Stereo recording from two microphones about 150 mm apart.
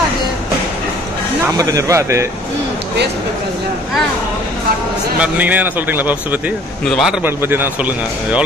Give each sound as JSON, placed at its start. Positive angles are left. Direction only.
{"t": 1.6, "sound": "speech", "side_deg": -20}
{"t": 5.2, "sound": "a man's voice", "side_deg": -10}
{"t": 6.9, "sound": "a man's voice", "side_deg": 0}
{"t": 7.2, "sound": "a man's voice", "side_deg": -15}